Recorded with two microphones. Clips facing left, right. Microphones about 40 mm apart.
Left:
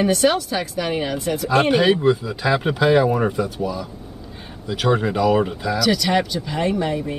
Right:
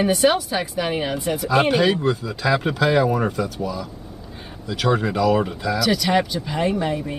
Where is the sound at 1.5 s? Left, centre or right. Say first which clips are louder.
Left 2 dB; centre.